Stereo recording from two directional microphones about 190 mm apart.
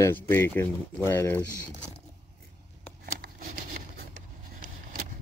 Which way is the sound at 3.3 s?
45° right (ahead or behind).